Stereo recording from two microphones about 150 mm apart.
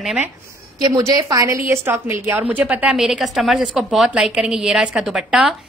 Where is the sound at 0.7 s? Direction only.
25° right (ahead or behind).